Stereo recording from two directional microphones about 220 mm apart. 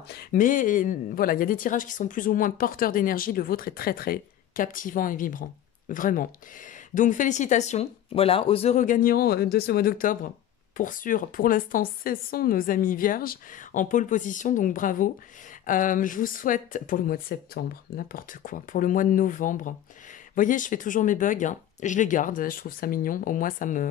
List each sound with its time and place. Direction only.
0.1 s a woman's voice: 40° left (ahead or behind)